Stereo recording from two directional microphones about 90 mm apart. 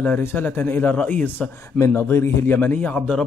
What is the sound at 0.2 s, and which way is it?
A man's voice, 20° left (ahead or behind).